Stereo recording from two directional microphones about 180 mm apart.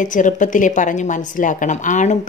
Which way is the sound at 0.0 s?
45° left (ahead or behind).